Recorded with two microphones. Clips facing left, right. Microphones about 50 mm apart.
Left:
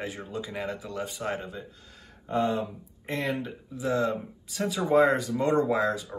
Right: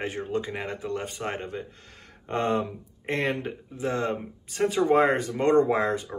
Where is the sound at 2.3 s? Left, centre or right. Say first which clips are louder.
Right 1 dB; right.